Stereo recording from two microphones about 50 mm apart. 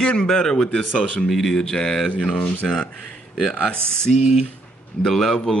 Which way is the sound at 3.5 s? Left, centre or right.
Left.